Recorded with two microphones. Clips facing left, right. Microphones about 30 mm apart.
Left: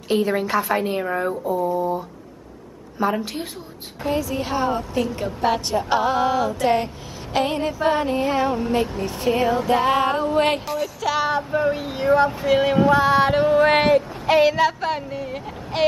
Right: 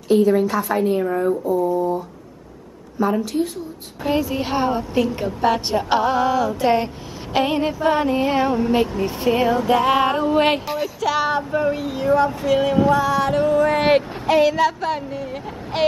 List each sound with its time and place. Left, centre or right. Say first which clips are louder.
0.1 s music: right 5 dB; left
0.6 s a woman's voice: right 2 dB; left
1.4 s speech: right 2 dB; centre
3.0 s a woman's voice: right 3 dB; left
4.1 s a woman's voice: right 3 dB; right
5.2 s a sound: right 2 dB; centre
5.7 s a woman's voice: right 2 dB; right
5.9 s a sound: right 2 dB; centre
6.5 s a sound: right 2 dB; centre
11.6 s a woman's voice: even; centre
13.0 s music: left 2 dB; left
14.2 s speech: left 1 dB; centre